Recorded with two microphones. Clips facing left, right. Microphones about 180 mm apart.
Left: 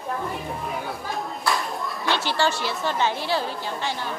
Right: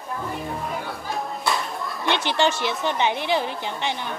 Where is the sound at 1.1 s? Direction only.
Centre (ahead or behind).